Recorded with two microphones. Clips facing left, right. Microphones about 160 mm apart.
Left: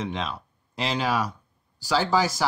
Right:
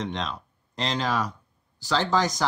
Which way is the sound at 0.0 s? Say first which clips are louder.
Left 1 dB; 5° left (ahead or behind).